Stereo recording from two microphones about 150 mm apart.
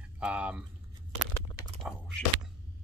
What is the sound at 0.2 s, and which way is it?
Speech, 10° right (ahead or behind).